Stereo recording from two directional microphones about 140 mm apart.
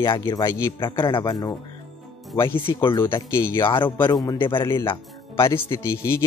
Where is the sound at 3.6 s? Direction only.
35° left (ahead or behind).